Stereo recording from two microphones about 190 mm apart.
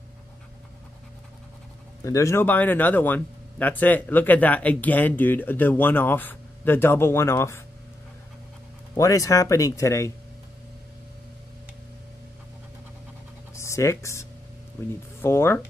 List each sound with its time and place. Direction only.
2.0 s speech: 15° left (ahead or behind)
8.9 s speech: 15° left (ahead or behind)
13.6 s speech: 15° left (ahead or behind)
15.2 s speech: 10° left (ahead or behind)